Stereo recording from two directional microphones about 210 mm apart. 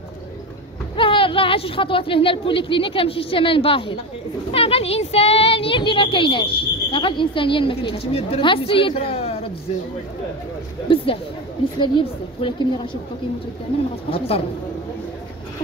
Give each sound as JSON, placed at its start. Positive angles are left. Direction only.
{"t": 0.9, "sound": "speech", "side_deg": 25}
{"t": 11.8, "sound": "speech", "side_deg": 25}
{"t": 14.1, "sound": "speech", "side_deg": 25}